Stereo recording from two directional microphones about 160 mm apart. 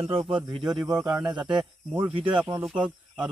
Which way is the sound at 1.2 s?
30° right (ahead or behind).